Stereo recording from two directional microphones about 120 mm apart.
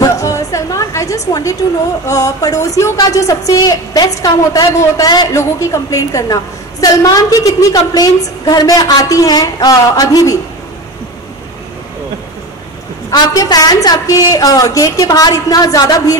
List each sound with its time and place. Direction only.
0.0 s music: 30° left (ahead or behind)
2.0 s a woman's voice: 30° left (ahead or behind)
13.1 s a woman's voice: 30° left (ahead or behind)